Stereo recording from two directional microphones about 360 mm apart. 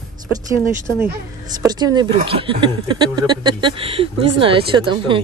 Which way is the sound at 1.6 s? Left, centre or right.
Centre.